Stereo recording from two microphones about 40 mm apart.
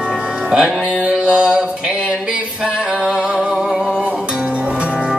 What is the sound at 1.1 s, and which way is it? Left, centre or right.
Mantra, right.